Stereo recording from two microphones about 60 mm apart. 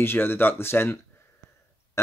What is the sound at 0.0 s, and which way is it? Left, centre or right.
Speech, left.